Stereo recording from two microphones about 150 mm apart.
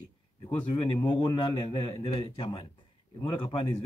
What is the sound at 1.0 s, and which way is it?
Speech, 30° left (ahead or behind).